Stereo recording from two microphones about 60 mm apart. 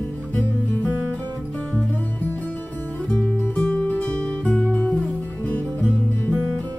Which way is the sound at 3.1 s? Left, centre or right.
Centre.